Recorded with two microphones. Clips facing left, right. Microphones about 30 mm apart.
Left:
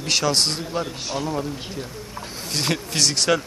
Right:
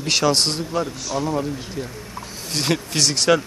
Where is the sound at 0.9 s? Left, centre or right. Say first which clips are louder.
Right 3 dB; left.